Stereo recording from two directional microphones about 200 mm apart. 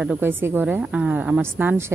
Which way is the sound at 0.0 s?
5° right (ahead or behind).